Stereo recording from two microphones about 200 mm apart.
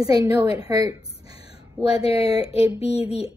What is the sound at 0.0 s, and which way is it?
Speech, 15° right (ahead or behind).